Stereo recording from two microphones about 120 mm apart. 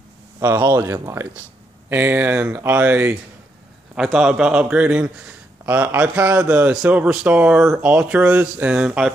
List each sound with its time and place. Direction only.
0.4 s a man's voice: 20° right (ahead or behind)
3.9 s a man's voice: 5° right (ahead or behind)